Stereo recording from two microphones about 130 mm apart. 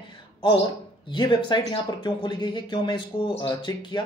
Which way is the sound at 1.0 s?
35° left (ahead or behind).